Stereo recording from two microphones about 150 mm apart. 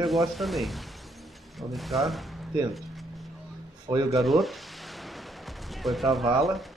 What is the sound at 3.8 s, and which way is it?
Speech, 20° right (ahead or behind).